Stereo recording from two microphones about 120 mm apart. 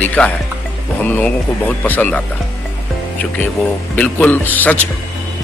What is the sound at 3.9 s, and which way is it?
Speech, 10° left (ahead or behind).